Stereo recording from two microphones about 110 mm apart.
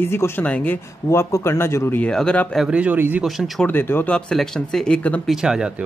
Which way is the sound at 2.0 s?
5° left (ahead or behind).